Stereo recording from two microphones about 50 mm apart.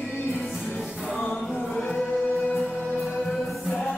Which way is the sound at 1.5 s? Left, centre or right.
Left.